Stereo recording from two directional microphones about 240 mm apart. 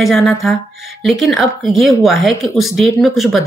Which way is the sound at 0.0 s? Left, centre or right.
Centre.